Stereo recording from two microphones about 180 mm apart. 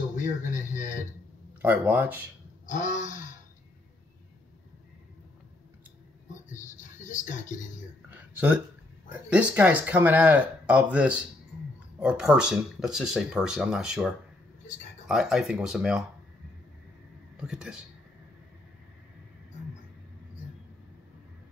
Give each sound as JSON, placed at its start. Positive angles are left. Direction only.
{"t": 0.1, "sound": "a sound", "side_deg": 45}
{"t": 1.6, "sound": "speech", "side_deg": -10}
{"t": 2.6, "sound": "wild animals", "side_deg": 45}
{"t": 6.3, "sound": "music", "side_deg": 45}
{"t": 8.1, "sound": "a sound", "side_deg": -10}
{"t": 9.1, "sound": "speech", "side_deg": -10}
{"t": 17.4, "sound": "speech", "side_deg": -5}